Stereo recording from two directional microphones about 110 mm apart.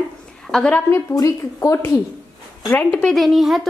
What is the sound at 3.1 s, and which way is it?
Speech, centre (ahead or behind).